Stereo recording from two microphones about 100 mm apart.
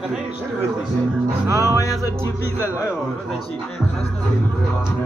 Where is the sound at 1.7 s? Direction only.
35° left (ahead or behind).